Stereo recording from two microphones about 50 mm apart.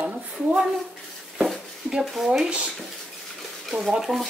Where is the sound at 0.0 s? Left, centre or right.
Right.